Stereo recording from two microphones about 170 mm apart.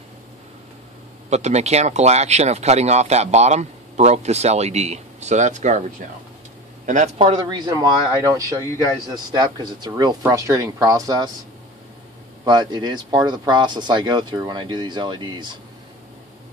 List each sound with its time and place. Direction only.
1.3 s speech: 40° right (ahead or behind)
7.2 s speech: 30° right (ahead or behind)
12.4 s speech: 25° right (ahead or behind)